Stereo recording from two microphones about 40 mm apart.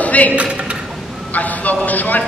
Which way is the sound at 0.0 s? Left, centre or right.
Left.